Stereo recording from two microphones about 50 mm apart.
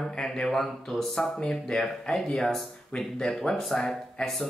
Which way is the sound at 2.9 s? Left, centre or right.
Left.